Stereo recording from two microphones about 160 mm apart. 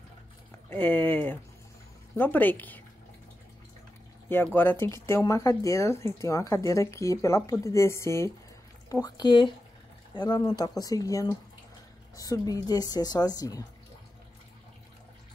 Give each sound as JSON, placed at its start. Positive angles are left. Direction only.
{"t": 0.7, "sound": "speech", "side_deg": 10}
{"t": 4.5, "sound": "a woman's voice", "side_deg": 15}